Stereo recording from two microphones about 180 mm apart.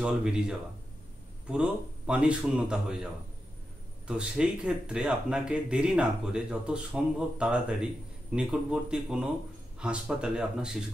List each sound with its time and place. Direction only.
0.0 s speech: 5° right (ahead or behind)
4.1 s speech: 5° right (ahead or behind)